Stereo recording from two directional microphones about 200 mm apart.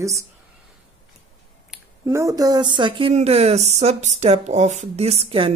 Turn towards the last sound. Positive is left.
turn(degrees=-30)  # may be behind; listen again after turning